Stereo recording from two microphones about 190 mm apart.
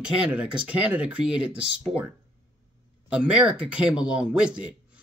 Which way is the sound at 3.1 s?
5° right (ahead or behind).